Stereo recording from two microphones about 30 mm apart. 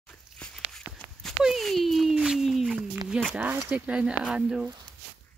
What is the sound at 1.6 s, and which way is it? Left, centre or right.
Speech, centre.